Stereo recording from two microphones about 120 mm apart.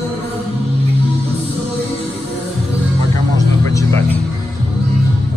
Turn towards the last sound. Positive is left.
turn(degrees=25)  # may be behind; listen again after turning